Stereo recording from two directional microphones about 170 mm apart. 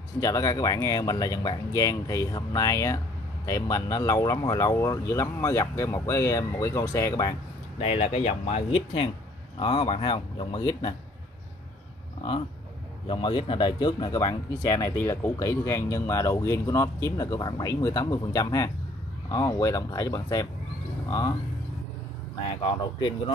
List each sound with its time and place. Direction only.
0.2 s speech: 20° left (ahead or behind)
7.8 s speech: 40° left (ahead or behind)
13.1 s speech: 30° left (ahead or behind)
22.7 s speech: 30° left (ahead or behind)